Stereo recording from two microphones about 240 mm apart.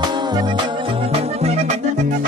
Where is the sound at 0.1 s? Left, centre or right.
Centre.